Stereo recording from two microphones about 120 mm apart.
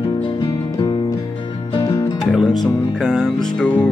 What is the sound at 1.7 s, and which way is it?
Music, 35° left (ahead or behind).